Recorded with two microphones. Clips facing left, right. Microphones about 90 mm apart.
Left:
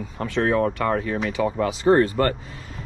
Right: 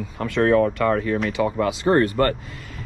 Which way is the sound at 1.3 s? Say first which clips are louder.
Right 1 dB; 55° right (ahead or behind).